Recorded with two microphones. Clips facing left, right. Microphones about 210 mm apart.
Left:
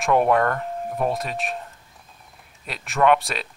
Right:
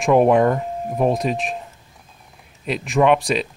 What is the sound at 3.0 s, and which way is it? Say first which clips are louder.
Speech: right 2 dB; 20° right (ahead or behind).